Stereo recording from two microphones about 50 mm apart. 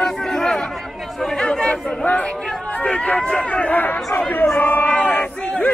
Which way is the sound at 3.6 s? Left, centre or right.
Left.